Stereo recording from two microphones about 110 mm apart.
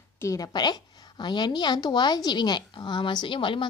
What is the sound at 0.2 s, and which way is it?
Speech, 30° left (ahead or behind).